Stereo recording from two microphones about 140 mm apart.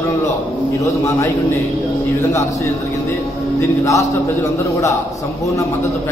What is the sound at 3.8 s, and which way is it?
Speech, 25° left (ahead or behind).